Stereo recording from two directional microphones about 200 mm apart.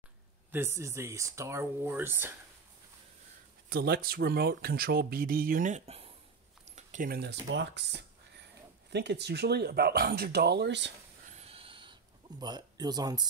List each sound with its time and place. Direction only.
0.5 s speech: 10° right (ahead or behind)
3.7 s speech: 50° right (ahead or behind)
11.3 s a sound: 30° right (ahead or behind)